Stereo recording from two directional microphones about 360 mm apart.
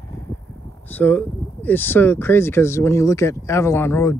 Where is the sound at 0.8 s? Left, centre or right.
Centre.